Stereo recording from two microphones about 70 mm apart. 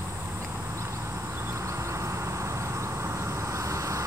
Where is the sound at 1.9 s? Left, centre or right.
Right.